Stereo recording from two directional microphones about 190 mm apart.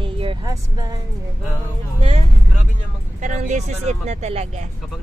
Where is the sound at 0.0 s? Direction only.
25° right (ahead or behind).